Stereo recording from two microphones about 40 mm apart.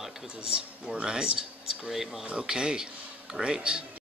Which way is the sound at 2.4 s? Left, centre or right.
Centre.